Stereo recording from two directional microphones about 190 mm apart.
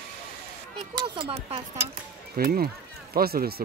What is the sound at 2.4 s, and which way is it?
Speech, 50° right (ahead or behind).